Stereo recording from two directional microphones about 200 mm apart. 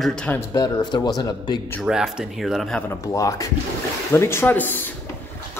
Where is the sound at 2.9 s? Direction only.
15° left (ahead or behind).